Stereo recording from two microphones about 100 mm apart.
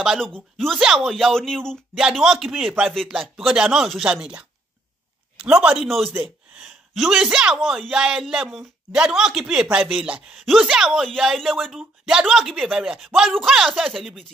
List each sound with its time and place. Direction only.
0.0 s speech: 5° right (ahead or behind)
2.0 s speech: 5° right (ahead or behind)
5.9 s a woman's voice: centre (ahead or behind)